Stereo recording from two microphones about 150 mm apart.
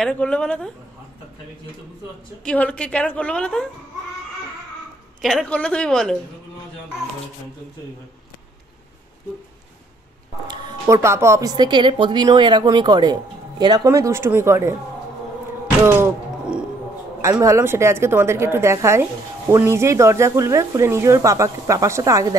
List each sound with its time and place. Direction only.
0.0 s a woman's voice: 5° left (ahead or behind)
2.4 s a woman's voice: 5° left (ahead or behind)
5.2 s a woman's voice: centre (ahead or behind)
10.5 s a woman's voice: 30° right (ahead or behind)
15.8 s a woman's voice: 15° right (ahead or behind)
17.2 s a woman's voice: 20° right (ahead or behind)